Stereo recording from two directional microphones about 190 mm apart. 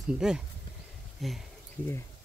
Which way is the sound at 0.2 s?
5° right (ahead or behind).